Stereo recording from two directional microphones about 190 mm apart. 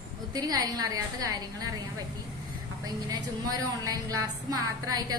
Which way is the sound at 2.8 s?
20° right (ahead or behind).